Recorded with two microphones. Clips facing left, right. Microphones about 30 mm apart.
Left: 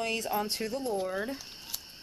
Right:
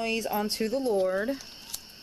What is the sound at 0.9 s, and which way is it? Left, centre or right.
Speech, centre.